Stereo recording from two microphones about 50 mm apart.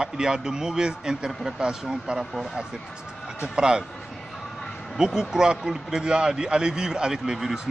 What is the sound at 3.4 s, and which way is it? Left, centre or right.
Speech, centre.